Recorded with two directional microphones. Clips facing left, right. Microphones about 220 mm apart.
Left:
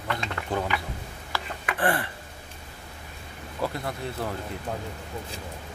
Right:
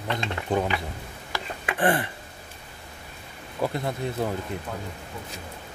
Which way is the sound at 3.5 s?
15° right (ahead or behind).